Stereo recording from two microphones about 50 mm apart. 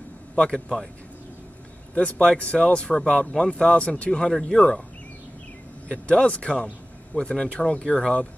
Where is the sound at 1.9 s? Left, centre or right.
Left.